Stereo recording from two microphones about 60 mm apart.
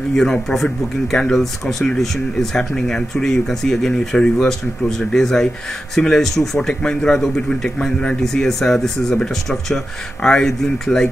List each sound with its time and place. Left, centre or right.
0.1 s speech: centre